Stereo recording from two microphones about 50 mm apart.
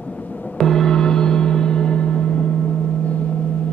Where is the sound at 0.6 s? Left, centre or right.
Centre.